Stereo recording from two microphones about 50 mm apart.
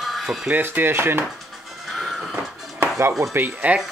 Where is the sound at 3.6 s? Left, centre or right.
Right.